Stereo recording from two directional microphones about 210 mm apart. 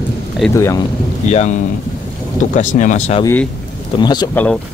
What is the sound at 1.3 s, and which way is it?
Speech, 35° left (ahead or behind).